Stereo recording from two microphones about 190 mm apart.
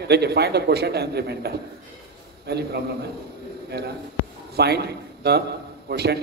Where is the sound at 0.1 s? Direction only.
60° right (ahead or behind).